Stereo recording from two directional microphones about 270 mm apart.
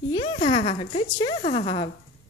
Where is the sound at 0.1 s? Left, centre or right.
Centre.